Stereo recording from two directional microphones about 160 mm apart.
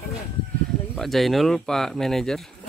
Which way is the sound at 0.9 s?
Centre (ahead or behind).